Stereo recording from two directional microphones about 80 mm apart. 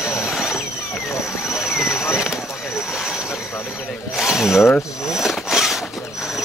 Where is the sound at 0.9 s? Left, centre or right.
Left.